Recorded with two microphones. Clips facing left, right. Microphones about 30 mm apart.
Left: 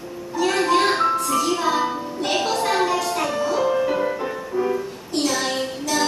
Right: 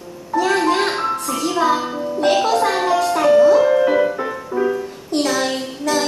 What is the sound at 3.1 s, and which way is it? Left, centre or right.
Music, centre.